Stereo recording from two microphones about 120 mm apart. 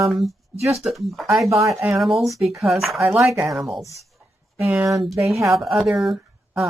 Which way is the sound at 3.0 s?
20° right (ahead or behind).